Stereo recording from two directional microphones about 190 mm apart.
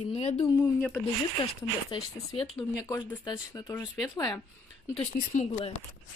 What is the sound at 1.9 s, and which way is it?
Speech, 25° left (ahead or behind).